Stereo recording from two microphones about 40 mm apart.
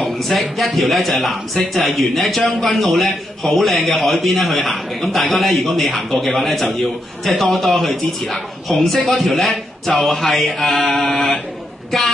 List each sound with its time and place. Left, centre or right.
0.0 s a man's voice: centre